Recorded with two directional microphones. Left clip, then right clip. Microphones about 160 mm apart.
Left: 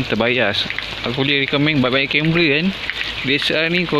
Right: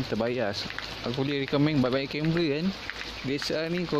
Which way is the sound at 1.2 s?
20° right (ahead or behind).